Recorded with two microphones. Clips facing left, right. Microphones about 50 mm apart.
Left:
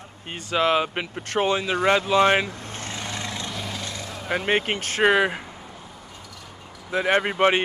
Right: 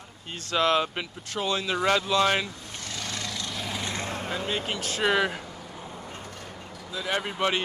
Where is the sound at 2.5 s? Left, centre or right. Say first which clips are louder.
Left 5 dB; left.